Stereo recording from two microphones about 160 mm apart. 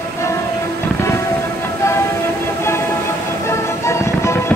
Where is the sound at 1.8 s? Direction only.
15° left (ahead or behind).